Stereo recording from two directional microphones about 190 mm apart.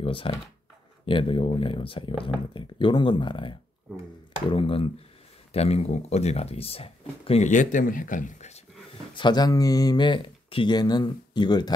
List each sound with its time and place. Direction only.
0.0 s speech: 30° left (ahead or behind)
9.1 s speech: 25° left (ahead or behind)